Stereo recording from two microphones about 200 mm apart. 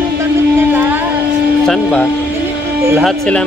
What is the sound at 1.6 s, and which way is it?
Speech, centre (ahead or behind).